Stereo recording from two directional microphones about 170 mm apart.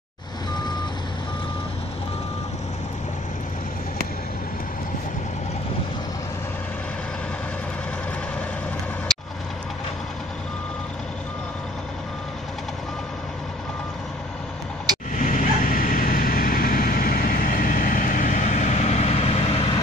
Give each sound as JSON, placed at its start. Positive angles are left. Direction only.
{"t": 15.1, "sound": "vehicle", "side_deg": 50}